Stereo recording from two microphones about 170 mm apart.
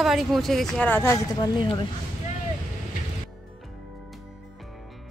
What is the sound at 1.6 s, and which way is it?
Speech, 30° left (ahead or behind).